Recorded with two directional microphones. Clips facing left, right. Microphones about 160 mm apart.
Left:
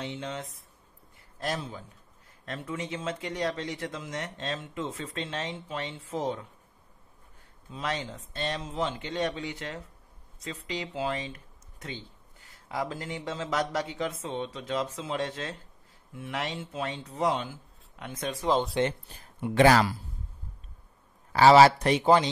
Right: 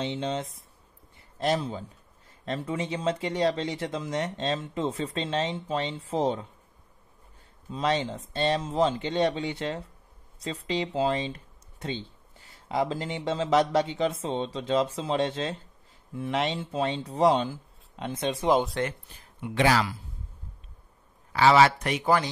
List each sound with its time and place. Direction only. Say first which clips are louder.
0.0 s speech: right 6 dB; 25° right (ahead or behind)
7.7 s speech: right 7 dB; 30° right (ahead or behind)
19.4 s speech: left 3 dB; 45° left (ahead or behind)
21.3 s speech: left 3 dB; 40° left (ahead or behind); by 22.3 s 25° left (ahead or behind)